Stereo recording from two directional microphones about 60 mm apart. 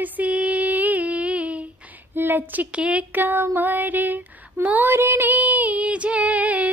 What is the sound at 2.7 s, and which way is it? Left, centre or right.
Female singing, right.